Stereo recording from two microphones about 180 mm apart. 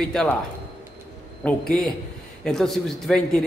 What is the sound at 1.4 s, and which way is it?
A man's voice, 5° left (ahead or behind).